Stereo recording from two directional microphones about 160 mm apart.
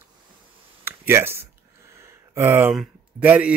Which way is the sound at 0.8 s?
15° right (ahead or behind).